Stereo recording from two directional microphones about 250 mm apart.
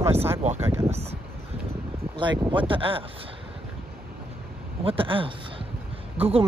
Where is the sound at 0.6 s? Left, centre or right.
Centre.